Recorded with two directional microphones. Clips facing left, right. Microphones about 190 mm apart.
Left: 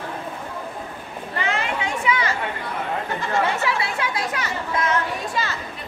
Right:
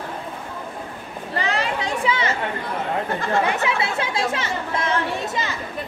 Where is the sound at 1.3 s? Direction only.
35° right (ahead or behind).